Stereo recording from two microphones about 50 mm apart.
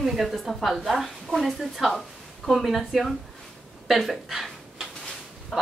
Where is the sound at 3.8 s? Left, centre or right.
Centre.